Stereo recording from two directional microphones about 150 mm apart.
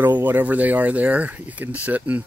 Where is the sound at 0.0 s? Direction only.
15° right (ahead or behind).